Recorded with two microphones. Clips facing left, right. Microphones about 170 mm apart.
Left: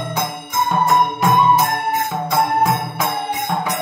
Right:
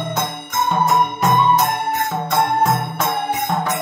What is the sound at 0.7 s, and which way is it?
Music, centre (ahead or behind).